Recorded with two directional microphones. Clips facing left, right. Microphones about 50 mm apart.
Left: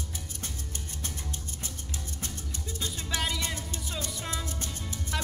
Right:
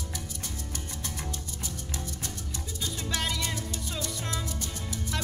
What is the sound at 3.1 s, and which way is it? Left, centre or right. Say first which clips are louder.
Music: left 1 dB; centre.